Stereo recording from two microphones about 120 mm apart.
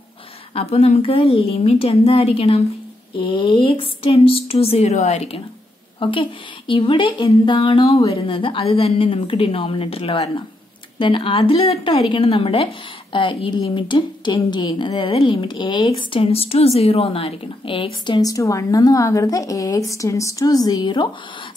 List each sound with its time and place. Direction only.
0.6 s a woman's voice: 60° left (ahead or behind)
3.2 s a woman's voice: 40° left (ahead or behind); by 5.4 s 65° left (ahead or behind)
5.9 s a woman's voice: 45° left (ahead or behind)